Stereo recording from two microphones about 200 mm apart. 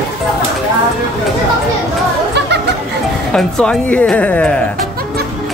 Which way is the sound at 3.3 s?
5° left (ahead or behind).